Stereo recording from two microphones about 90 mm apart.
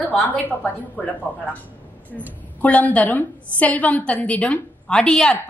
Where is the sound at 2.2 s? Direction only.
15° left (ahead or behind).